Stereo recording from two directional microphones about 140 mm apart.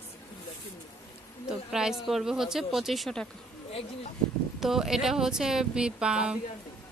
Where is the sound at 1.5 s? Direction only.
5° right (ahead or behind).